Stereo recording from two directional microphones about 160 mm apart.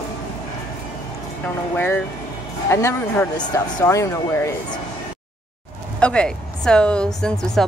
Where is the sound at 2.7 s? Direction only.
15° left (ahead or behind).